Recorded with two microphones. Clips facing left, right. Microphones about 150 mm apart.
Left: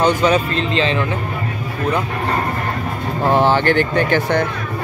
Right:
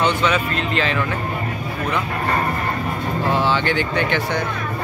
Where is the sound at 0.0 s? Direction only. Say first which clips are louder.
Left 4 dB; 35° left (ahead or behind).